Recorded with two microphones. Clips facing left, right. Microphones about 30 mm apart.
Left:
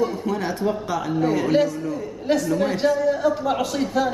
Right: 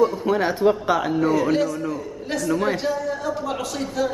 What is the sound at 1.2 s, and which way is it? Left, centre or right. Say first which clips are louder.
Speech: left 4 dB; centre.